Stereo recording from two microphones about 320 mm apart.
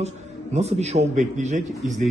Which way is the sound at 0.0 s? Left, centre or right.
Centre.